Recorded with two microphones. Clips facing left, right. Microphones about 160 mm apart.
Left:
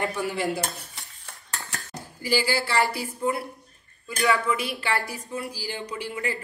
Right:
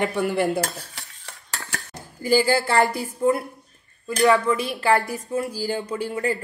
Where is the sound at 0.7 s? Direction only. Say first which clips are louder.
Right 4 dB; 85° right.